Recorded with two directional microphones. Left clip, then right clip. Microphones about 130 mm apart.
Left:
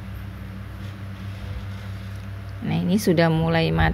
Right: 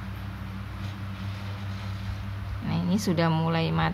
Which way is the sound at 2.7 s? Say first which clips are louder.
Left 7 dB; 40° left (ahead or behind).